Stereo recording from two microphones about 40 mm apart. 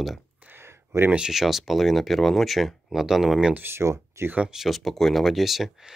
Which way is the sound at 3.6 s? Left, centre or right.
Right.